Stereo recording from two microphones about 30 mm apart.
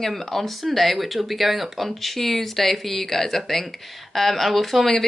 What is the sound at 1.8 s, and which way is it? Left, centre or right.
A woman's voice, centre.